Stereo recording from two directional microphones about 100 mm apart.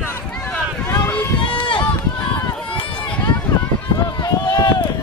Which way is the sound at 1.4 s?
55° left (ahead or behind).